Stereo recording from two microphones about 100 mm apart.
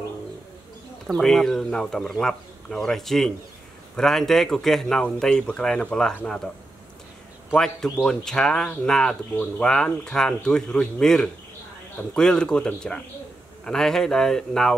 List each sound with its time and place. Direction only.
1.1 s a man's voice: 5° left (ahead or behind)
7.5 s a man's voice: 5° left (ahead or behind)